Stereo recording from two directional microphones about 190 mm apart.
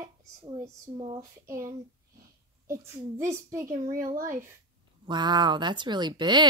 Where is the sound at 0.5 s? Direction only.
20° right (ahead or behind).